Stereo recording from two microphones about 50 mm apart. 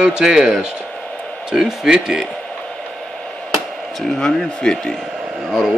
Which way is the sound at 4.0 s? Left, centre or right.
Centre.